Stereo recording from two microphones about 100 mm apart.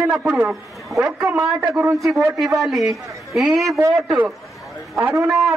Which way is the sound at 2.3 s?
Centre (ahead or behind).